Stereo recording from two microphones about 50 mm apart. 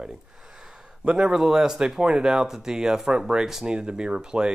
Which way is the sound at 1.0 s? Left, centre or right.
Centre.